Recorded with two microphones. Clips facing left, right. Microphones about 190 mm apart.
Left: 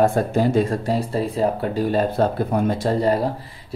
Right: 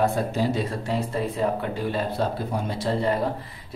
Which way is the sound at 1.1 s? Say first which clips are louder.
Left 3 dB; 35° left (ahead or behind).